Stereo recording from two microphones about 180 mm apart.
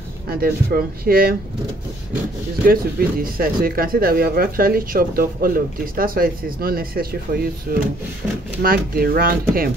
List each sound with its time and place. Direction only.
0.3 s speech: 55° right (ahead or behind)
2.7 s speech: 55° right (ahead or behind)